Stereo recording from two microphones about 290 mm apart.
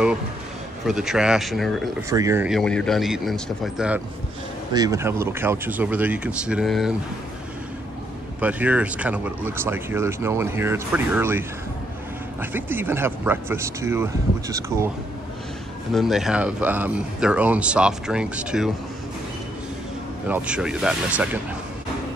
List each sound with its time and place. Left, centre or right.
0.8 s speech: centre
2.0 s speech: centre
8.4 s speech: centre
15.9 s speech: centre
20.2 s speech: centre